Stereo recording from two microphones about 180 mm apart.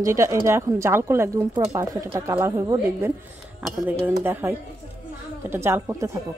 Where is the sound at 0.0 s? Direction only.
15° right (ahead or behind).